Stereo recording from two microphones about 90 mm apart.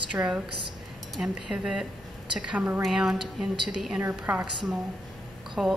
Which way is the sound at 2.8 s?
5° right (ahead or behind).